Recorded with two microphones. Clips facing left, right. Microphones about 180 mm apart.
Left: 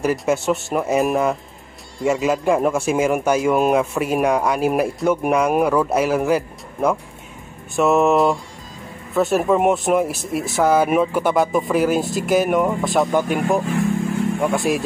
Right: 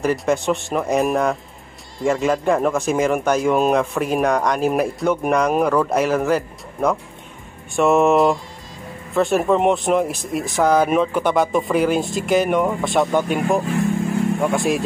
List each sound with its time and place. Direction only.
0.0 s a man's voice: 5° left (ahead or behind)